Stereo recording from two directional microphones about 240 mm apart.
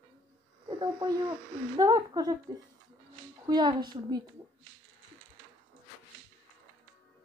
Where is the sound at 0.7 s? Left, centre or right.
Centre.